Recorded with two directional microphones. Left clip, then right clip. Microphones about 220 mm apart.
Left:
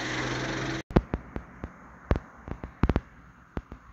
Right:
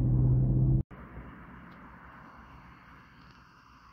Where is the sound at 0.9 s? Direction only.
35° right (ahead or behind).